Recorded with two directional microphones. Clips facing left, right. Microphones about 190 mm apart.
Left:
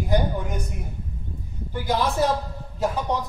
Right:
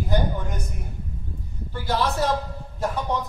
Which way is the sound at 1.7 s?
15° left (ahead or behind).